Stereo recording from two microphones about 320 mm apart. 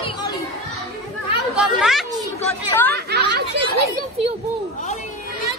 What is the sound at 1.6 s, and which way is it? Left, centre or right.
Chatter, centre.